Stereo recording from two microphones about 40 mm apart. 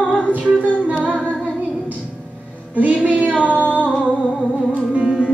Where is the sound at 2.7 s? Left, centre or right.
Right.